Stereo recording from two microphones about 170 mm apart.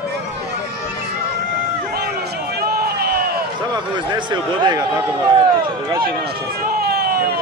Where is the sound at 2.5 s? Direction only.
65° right (ahead or behind).